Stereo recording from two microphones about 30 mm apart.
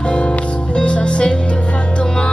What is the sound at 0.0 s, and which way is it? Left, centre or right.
Music, left.